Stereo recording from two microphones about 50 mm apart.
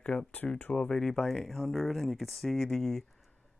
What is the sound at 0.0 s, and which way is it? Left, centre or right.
Speech, centre.